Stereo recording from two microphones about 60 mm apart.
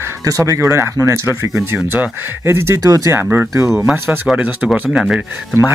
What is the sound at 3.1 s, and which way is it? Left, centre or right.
Speech, right.